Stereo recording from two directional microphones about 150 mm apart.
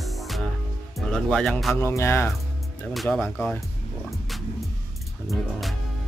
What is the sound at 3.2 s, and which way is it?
Speech, 15° left (ahead or behind).